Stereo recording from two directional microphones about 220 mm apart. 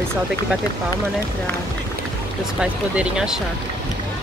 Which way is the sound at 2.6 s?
5° right (ahead or behind).